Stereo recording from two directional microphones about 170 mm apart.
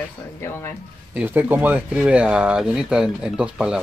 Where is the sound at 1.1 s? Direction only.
10° right (ahead or behind).